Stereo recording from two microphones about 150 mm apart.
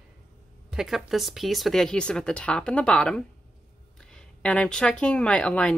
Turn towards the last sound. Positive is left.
turn(degrees=5)  # may be behind; listen again after turning